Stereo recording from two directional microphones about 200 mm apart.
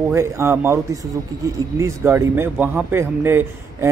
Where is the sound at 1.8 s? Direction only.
15° right (ahead or behind).